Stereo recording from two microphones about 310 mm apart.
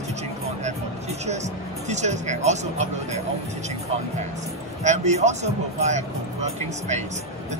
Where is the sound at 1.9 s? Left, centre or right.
Right.